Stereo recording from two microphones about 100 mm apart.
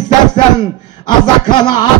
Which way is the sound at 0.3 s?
45° left (ahead or behind).